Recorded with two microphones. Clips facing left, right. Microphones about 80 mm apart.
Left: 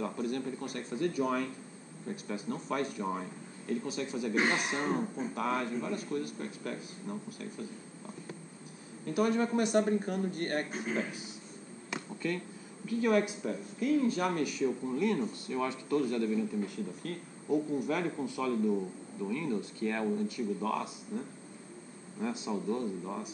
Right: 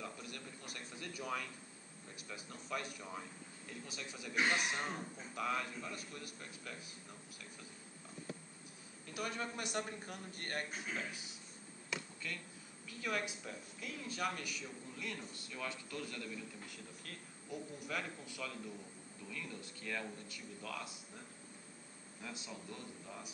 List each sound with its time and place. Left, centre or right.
0.0 s a man's voice: left
9.2 s a man's voice: left
11.9 s a sound: left
12.8 s a man's voice: left
14.6 s speech: left
15.0 s a man's voice: left
22.5 s a man's voice: left